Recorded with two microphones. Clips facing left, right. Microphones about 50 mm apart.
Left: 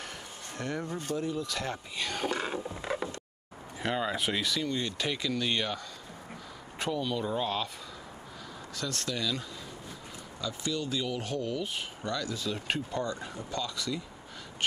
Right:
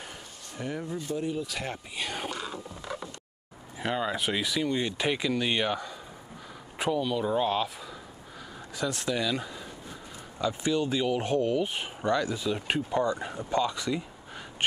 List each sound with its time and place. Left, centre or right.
0.6 s speech: centre
2.3 s a sound: left
3.8 s speech: centre
8.7 s speech: centre